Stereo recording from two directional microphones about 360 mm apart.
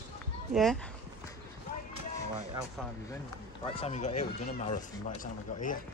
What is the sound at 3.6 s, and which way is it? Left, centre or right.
Speech, centre.